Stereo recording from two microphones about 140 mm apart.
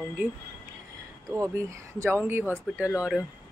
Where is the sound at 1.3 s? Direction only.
20° right (ahead or behind).